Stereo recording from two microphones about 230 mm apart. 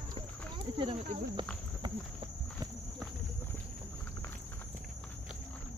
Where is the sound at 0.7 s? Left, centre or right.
Right.